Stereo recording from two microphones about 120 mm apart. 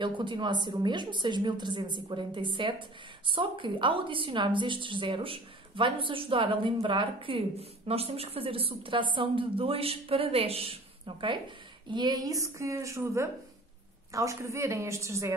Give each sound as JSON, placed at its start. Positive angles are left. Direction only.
{"t": 0.2, "sound": "a woman's voice", "side_deg": -40}
{"t": 11.9, "sound": "a woman's voice", "side_deg": -35}